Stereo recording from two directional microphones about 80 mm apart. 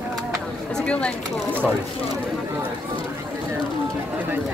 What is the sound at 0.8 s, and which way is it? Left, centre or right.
Speech, centre.